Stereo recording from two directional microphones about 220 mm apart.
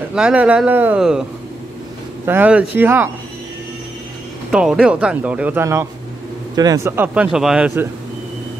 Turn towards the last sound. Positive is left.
turn(degrees=-5)  # may be behind; listen again after turning